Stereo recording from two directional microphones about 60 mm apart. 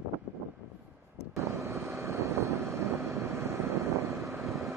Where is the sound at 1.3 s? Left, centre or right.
Right.